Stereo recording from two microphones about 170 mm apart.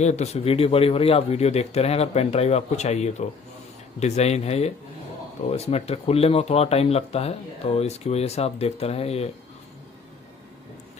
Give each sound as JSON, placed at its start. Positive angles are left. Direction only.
{"t": 0.0, "sound": "speech", "side_deg": 40}